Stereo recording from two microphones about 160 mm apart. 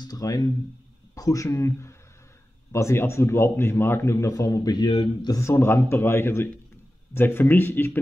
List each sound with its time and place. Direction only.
0.0 s a man's voice: 25° left (ahead or behind)